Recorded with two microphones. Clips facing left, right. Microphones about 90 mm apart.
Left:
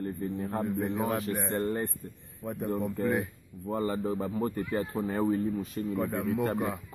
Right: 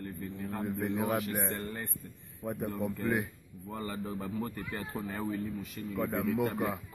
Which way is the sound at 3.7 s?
35° left (ahead or behind).